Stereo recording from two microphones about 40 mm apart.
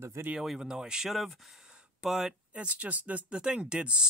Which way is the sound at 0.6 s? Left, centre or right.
Centre.